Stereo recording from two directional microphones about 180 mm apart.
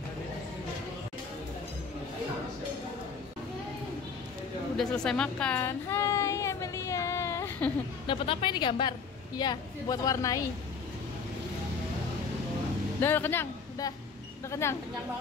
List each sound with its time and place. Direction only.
4.7 s a sound: 5° left (ahead or behind)
8.1 s a woman's voice: 30° left (ahead or behind)
13.0 s a man's voice: 10° left (ahead or behind)